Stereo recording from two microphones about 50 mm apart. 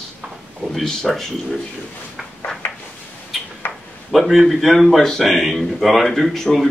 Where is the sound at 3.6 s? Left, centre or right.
Left.